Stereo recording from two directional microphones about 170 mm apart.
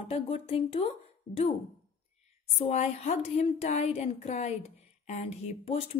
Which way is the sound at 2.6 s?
40° left (ahead or behind).